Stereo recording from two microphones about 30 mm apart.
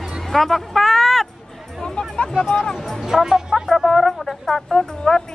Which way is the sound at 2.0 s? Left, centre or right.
Left.